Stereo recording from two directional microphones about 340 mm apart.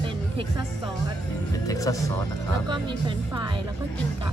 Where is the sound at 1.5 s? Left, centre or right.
Centre.